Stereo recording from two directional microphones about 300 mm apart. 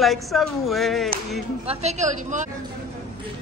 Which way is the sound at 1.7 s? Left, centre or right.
Right.